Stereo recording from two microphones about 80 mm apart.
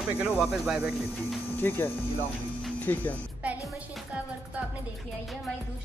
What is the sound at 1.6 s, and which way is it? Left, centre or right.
Speech, left.